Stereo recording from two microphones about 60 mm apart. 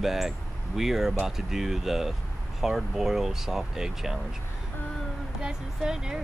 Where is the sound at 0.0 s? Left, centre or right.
Centre.